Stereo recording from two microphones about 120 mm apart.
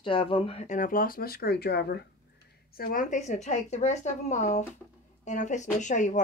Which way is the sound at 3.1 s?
80° left.